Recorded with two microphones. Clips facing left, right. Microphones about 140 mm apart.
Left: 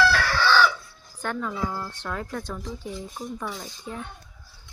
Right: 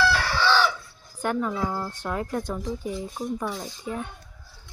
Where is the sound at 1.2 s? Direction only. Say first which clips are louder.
Right 3 dB; 10° right (ahead or behind).